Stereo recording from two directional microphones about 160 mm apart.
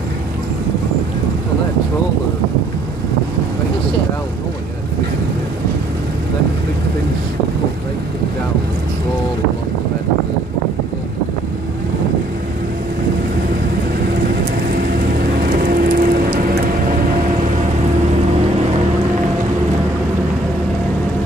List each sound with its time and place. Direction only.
15.5 s rain on surface: 60° right (ahead or behind)